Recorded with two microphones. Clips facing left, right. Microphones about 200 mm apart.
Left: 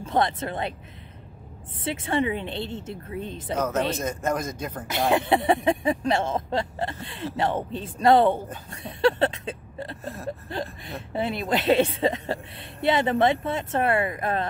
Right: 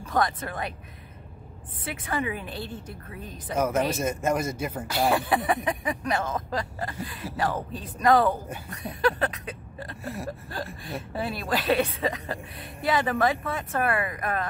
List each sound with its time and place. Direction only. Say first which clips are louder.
0.0 s a woman's voice: left 2 dB; 25° left (ahead or behind)
1.9 s a woman's voice: left 5 dB; 25° left (ahead or behind)
3.5 s speech: right 1 dB; 10° right (ahead or behind)
5.1 s a woman's voice: left 3 dB; 25° left (ahead or behind)
10.0 s speech: even; 10° right (ahead or behind)
11.1 s a woman's voice: left 4 dB; 25° left (ahead or behind)